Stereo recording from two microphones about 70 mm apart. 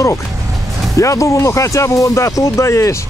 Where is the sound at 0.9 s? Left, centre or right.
Left.